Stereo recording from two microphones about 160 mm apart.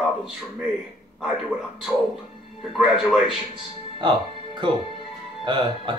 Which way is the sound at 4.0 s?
30° right (ahead or behind).